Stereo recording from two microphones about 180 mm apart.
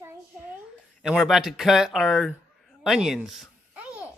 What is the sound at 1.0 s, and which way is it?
Speech, centre (ahead or behind).